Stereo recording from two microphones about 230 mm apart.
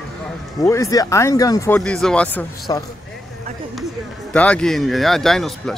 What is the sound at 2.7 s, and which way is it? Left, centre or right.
Speech, centre.